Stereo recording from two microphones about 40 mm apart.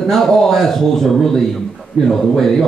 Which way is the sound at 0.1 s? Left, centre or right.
Centre.